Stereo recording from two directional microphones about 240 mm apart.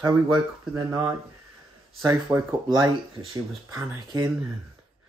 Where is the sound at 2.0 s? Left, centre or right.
Centre.